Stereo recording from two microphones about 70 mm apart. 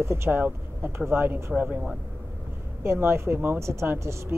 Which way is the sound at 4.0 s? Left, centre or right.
Right.